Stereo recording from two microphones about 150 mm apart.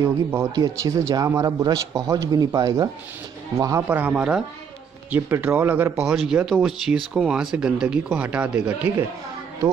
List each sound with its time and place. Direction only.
0.0 s speech: 20° right (ahead or behind)